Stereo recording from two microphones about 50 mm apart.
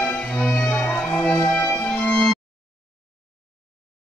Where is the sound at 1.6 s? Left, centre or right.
Left.